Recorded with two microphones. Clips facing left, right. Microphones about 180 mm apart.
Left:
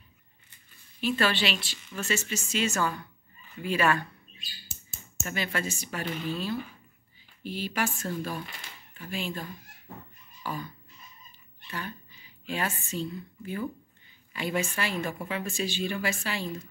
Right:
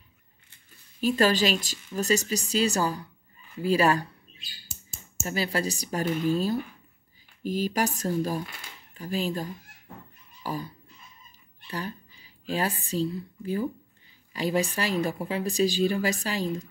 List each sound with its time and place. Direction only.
1.0 s speech: 40° right (ahead or behind)
5.2 s speech: 35° right (ahead or behind)
10.4 s a sound: 35° right (ahead or behind)
11.6 s speech: 35° right (ahead or behind)